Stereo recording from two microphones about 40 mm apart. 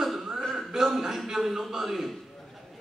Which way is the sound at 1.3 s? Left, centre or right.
Centre.